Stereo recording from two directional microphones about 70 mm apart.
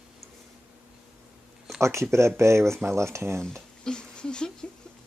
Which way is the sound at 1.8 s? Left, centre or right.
Right.